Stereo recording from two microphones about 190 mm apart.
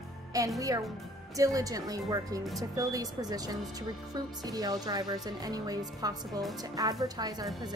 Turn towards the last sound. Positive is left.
turn(degrees=-20)  # may be behind; listen again after turning